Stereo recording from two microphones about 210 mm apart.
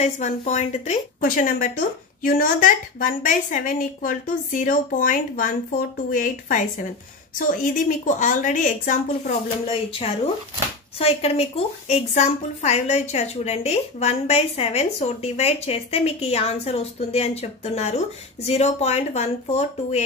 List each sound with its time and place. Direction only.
0.0 s a woman's voice: 35° left (ahead or behind)